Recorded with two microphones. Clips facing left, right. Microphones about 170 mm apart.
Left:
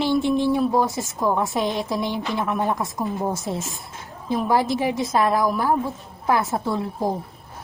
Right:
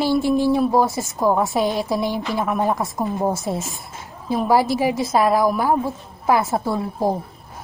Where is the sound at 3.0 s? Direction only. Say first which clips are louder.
Right 3 dB; 25° right (ahead or behind).